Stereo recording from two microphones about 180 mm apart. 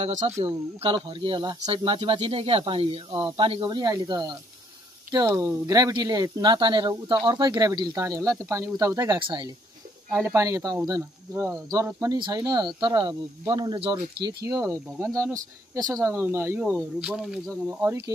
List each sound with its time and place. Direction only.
0.0 s speech: 40° right (ahead or behind)
0.8 s speech: 25° right (ahead or behind); by 18.0 s 10° right (ahead or behind)